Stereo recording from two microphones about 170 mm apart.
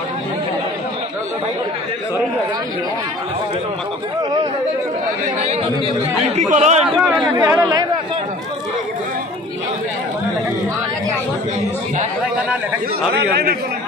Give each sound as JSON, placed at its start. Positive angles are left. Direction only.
{"t": 5.4, "sound": "chatter", "side_deg": -40}
{"t": 6.3, "sound": "speech", "side_deg": -45}
{"t": 7.3, "sound": "speech", "side_deg": -15}
{"t": 13.3, "sound": "a man's voice", "side_deg": -65}